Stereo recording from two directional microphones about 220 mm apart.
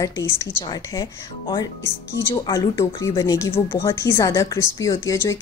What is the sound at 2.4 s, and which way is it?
A woman's voice, 15° left (ahead or behind).